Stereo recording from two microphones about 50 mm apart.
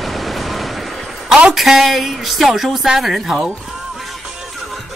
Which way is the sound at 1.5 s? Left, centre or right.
Centre.